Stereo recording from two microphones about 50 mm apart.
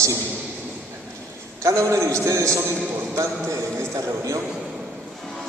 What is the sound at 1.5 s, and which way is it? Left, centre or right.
A man's voice, right.